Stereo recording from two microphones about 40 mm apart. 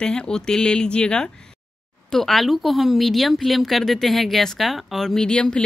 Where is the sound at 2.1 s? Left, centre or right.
Centre.